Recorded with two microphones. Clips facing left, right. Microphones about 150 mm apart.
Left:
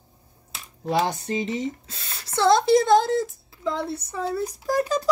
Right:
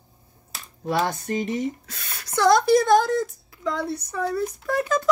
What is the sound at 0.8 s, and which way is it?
Speech, 20° left (ahead or behind).